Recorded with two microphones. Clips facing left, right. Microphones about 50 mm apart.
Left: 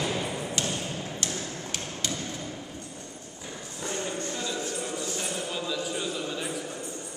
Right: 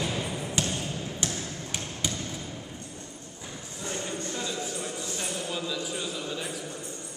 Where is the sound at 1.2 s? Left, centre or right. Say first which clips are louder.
Even; centre.